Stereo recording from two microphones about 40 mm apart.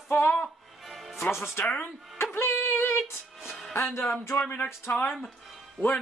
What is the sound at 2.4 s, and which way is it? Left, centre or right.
Music, left.